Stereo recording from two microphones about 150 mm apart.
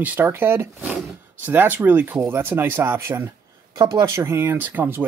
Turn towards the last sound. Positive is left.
turn(degrees=-15)  # may be behind; listen again after turning